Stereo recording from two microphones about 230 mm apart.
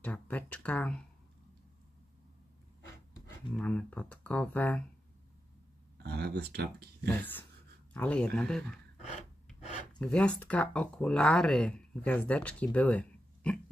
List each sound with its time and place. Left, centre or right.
0.0 s speech: centre
3.5 s speech: centre
6.0 s speech: right
7.2 s speech: centre